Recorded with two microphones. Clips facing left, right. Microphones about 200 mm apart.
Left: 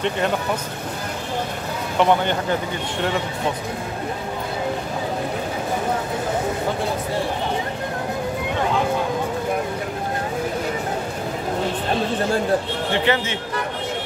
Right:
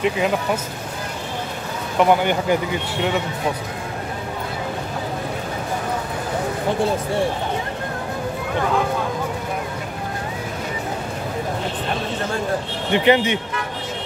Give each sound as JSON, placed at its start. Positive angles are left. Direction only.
{"t": 2.0, "sound": "speech", "side_deg": -5}
{"t": 12.9, "sound": "speech", "side_deg": -15}